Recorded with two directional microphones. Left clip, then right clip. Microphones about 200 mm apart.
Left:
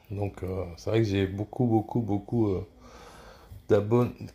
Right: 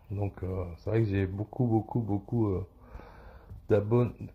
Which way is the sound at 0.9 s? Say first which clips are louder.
Left 4 dB; 30° right (ahead or behind).